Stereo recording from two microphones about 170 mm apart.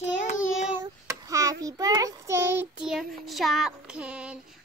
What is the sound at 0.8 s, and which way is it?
Child singing, 20° right (ahead or behind).